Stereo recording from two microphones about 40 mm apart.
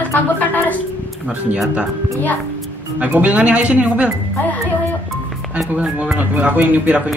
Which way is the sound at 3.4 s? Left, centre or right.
Right.